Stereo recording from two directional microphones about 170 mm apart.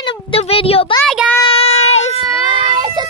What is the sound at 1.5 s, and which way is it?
Child singing, 35° left (ahead or behind).